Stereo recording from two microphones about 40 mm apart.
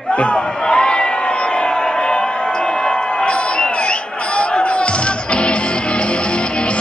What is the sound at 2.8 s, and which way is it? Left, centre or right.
Music, left.